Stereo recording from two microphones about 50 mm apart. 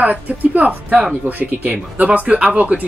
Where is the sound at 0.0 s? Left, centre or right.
Right.